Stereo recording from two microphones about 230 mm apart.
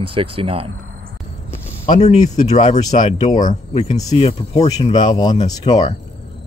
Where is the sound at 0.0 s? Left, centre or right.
Right.